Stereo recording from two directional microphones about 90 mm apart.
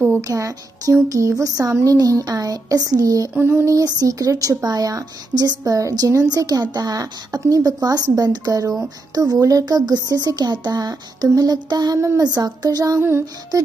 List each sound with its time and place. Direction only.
0.2 s speech: 35° right (ahead or behind)
3.3 s a sound: 25° right (ahead or behind)
3.6 s speech: 40° right (ahead or behind)